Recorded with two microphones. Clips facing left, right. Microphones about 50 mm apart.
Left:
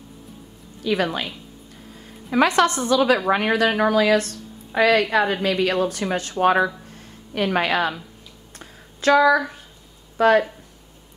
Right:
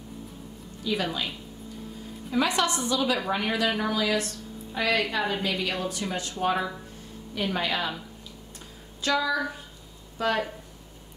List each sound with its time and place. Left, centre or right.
0.8 s a woman's voice: left
2.3 s a woman's voice: left
8.5 s a sound: left
10.1 s speech: left